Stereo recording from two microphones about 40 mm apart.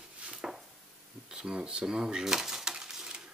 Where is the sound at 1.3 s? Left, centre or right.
Right.